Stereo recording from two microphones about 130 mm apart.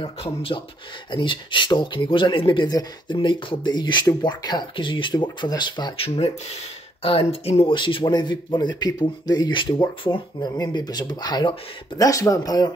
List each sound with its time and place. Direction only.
0.0 s speech: 45° left (ahead or behind)
6.0 s speech: 50° left (ahead or behind); by 12.7 s 30° left (ahead or behind)